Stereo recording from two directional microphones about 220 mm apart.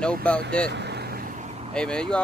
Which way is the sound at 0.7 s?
50° right (ahead or behind).